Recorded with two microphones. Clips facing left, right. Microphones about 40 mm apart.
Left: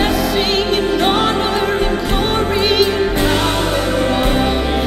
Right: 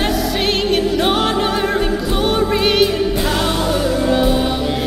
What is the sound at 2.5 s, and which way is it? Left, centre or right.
Music, centre.